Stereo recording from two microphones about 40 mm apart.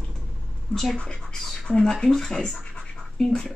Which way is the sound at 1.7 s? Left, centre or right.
Centre.